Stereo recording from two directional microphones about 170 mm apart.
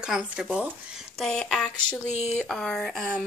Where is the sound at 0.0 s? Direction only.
5° right (ahead or behind).